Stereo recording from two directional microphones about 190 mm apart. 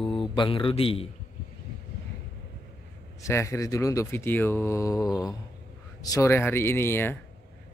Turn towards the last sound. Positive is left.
turn(degrees=10)  # may be behind; listen again after turning